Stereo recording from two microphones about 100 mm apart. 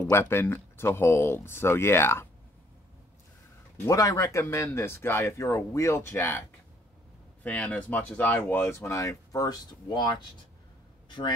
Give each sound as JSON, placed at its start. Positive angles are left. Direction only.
{"t": 0.1, "sound": "speech", "side_deg": 25}
{"t": 3.8, "sound": "speech", "side_deg": 35}
{"t": 7.4, "sound": "a man's voice", "side_deg": 15}